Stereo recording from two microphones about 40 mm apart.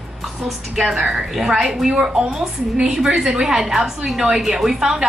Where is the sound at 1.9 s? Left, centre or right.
Right.